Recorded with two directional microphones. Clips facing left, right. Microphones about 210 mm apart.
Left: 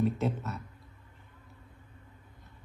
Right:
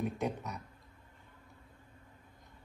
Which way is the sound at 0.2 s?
15° right (ahead or behind).